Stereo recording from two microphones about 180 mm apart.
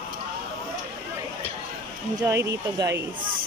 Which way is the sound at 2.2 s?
15° right (ahead or behind).